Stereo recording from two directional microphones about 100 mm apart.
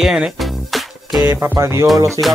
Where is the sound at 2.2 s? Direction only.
55° right (ahead or behind).